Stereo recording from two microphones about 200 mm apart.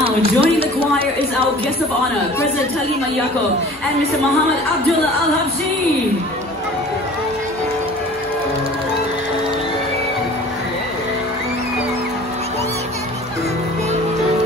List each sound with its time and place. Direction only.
0.0 s a woman's voice: 30° right (ahead or behind)